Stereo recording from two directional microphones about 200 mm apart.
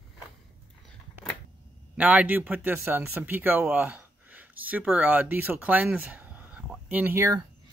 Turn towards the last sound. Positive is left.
turn(degrees=-10)  # may be behind; listen again after turning